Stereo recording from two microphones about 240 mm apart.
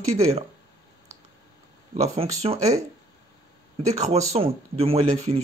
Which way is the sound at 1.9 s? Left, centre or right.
Right.